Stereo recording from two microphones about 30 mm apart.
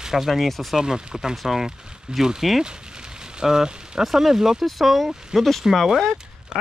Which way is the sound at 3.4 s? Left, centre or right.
Right.